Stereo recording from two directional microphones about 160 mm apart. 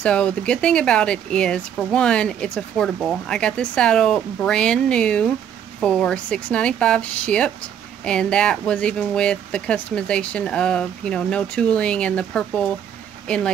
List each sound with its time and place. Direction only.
0.0 s speech: 5° left (ahead or behind)